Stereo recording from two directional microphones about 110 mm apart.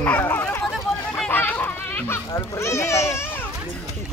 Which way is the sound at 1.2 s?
15° left (ahead or behind).